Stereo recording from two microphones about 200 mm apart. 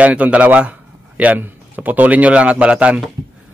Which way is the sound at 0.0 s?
5° right (ahead or behind).